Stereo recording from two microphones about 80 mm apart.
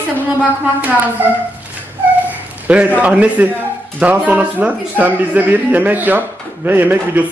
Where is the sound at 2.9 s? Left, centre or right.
Centre.